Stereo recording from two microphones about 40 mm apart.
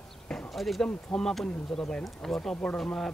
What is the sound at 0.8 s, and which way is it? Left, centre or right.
Speech, centre.